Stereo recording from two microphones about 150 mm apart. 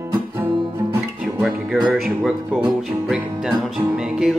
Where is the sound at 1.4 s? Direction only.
Centre (ahead or behind).